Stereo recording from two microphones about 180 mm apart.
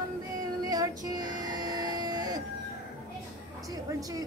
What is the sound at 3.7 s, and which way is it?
Speech, 20° right (ahead or behind).